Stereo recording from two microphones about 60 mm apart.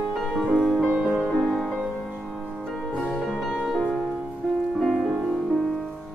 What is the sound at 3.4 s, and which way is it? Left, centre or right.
Music, centre.